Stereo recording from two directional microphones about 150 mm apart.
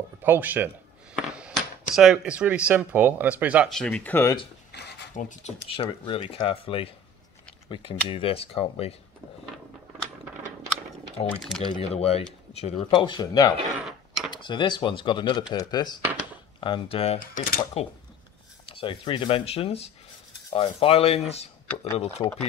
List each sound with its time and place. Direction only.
0.2 s speech: 10° right (ahead or behind)
1.1 s a sound: 5° right (ahead or behind)
2.0 s speech: 5° right (ahead or behind)
3.7 s speech: 5° left (ahead or behind)
4.7 s a sound: 90° left
5.1 s speech: 55° left (ahead or behind)
5.7 s speech: 35° left (ahead or behind)
11.2 s speech: 5° left (ahead or behind)
11.7 s speech: 45° left (ahead or behind); by 13.6 s 25° left (ahead or behind)
13.7 s a sound: centre (ahead or behind)
14.3 s speech: 30° left (ahead or behind)
17.2 s speech: 70° left (ahead or behind)
18.7 s speech: 35° left (ahead or behind)